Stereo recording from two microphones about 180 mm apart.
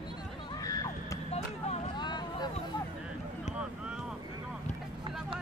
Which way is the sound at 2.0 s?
25° left (ahead or behind).